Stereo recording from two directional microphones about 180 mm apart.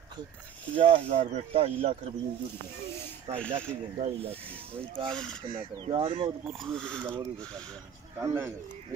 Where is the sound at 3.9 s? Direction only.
35° right (ahead or behind).